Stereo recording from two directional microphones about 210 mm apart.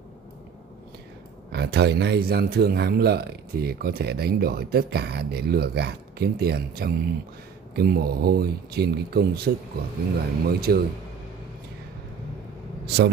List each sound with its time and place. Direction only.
1.5 s a man's voice: 50° right (ahead or behind)